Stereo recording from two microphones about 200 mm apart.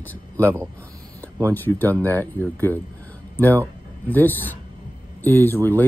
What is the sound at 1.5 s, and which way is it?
Speech, 10° left (ahead or behind).